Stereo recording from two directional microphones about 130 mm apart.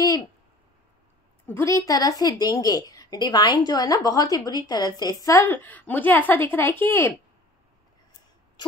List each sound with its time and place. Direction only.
1.5 s a woman's voice: 25° left (ahead or behind)